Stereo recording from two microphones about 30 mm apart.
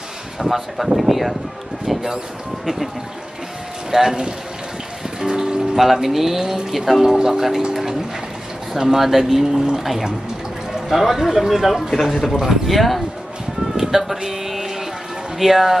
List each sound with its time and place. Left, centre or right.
0.4 s speech: centre
1.9 s a sound: centre
2.6 s speech: centre
3.9 s speech: centre
5.2 s music: right
5.8 s speech: centre
6.4 s speech: centre
6.7 s speech: centre
7.0 s speech: centre
8.7 s speech: centre
11.9 s speech: centre
12.2 s speech: centre
13.7 s a sound: centre
15.3 s speech: centre